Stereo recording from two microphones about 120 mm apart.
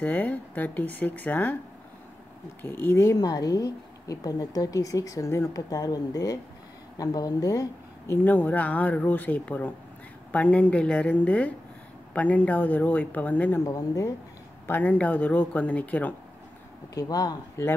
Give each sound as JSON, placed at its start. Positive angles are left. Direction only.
{"t": 0.0, "sound": "speech", "side_deg": 15}
{"t": 2.6, "sound": "a woman's voice", "side_deg": 20}
{"t": 8.1, "sound": "speech", "side_deg": 15}
{"t": 13.7, "sound": "a woman's voice", "side_deg": 30}
{"t": 14.7, "sound": "speech", "side_deg": 15}
{"t": 16.9, "sound": "speech", "side_deg": 35}